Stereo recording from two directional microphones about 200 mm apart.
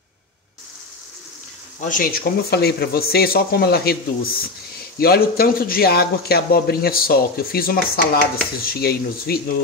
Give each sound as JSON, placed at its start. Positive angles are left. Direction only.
{"t": 1.8, "sound": "a man's voice", "side_deg": 45}